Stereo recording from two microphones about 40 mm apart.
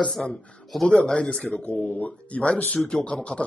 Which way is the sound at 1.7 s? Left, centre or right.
Left.